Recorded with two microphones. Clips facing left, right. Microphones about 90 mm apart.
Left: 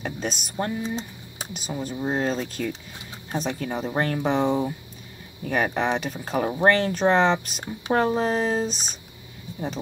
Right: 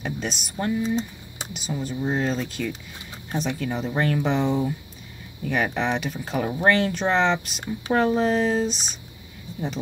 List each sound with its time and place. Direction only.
0.0 s speech: 40° left (ahead or behind)